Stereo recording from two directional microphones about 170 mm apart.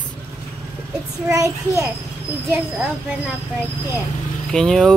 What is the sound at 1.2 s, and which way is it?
Speech, 20° right (ahead or behind).